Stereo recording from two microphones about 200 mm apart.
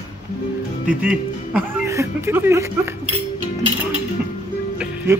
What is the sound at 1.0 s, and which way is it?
Speech, 10° right (ahead or behind).